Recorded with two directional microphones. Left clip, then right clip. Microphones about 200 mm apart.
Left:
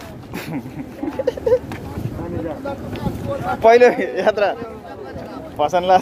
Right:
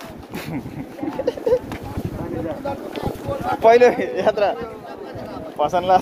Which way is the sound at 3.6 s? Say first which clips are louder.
Left 2 dB; 10° left (ahead or behind).